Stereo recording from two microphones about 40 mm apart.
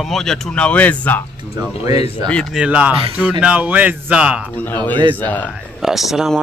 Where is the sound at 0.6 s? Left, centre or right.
Left.